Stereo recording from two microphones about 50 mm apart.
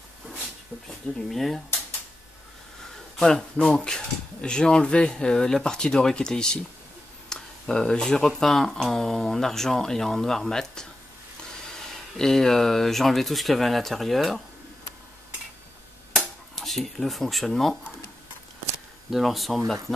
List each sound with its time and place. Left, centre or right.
1.3 s speech: centre
3.2 s speech: centre
12.2 s speech: centre
16.2 s speech: centre
19.0 s speech: centre